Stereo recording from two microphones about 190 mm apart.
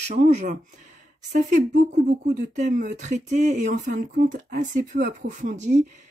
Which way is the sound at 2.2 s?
40° right (ahead or behind).